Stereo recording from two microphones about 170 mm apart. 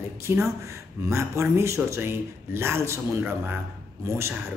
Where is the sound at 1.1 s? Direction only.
15° right (ahead or behind).